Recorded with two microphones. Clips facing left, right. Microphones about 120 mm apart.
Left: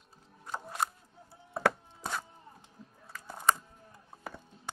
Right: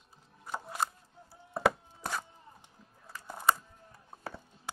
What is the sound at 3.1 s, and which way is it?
Music, 5° right (ahead or behind).